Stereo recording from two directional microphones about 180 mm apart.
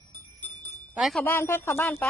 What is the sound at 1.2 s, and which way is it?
Speech, 15° left (ahead or behind).